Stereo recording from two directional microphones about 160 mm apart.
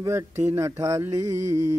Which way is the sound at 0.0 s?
15° right (ahead or behind).